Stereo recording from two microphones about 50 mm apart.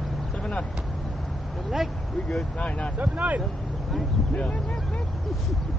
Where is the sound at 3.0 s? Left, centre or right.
Right.